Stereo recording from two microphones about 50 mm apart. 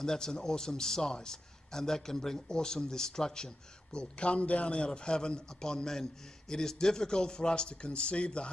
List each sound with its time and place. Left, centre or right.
0.0 s a man's voice: centre